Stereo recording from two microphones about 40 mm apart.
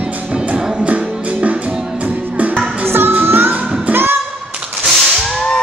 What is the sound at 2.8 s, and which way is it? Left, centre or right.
Music, right.